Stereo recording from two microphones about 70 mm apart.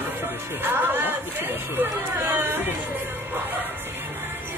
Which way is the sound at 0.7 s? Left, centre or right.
Right.